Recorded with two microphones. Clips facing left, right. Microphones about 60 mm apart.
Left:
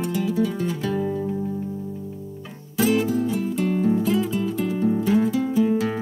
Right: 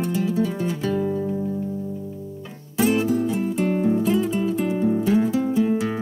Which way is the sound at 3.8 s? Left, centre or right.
Centre.